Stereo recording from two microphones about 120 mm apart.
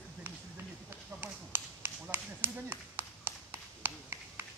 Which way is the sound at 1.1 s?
15° right (ahead or behind).